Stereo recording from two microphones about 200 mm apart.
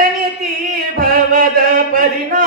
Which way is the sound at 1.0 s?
45° right (ahead or behind).